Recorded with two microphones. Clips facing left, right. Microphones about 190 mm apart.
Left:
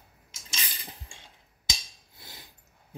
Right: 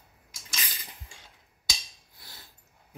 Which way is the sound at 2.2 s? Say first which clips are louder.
Left 3 dB; 20° left (ahead or behind).